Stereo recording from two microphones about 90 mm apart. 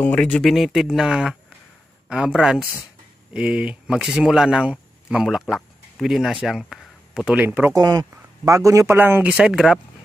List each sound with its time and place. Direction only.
0.0 s speech: 15° left (ahead or behind)
0.4 s speech: centre (ahead or behind)
7.3 s a man's voice: 20° right (ahead or behind)
7.7 s speech: 45° right (ahead or behind)
8.5 s a man's voice: 35° right (ahead or behind)
9.4 s speech: 5° right (ahead or behind)